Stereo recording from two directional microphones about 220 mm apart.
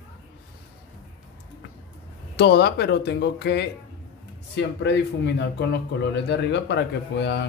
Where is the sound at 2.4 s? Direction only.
50° left (ahead or behind).